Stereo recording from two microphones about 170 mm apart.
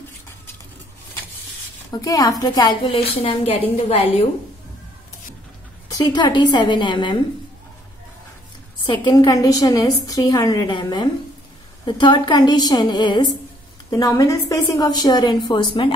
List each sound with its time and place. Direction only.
1.9 s a woman's voice: 20° left (ahead or behind)
5.9 s a woman's voice: 25° left (ahead or behind)
8.8 s a woman's voice: 25° left (ahead or behind)